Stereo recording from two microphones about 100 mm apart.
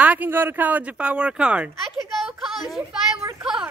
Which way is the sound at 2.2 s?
Centre (ahead or behind).